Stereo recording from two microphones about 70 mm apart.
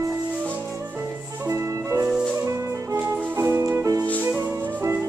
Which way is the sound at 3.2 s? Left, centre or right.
Right.